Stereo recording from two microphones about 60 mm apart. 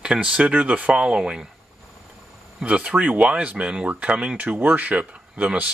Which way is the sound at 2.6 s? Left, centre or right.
Right.